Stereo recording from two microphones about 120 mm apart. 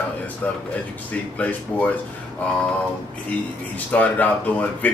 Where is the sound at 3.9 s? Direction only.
15° left (ahead or behind).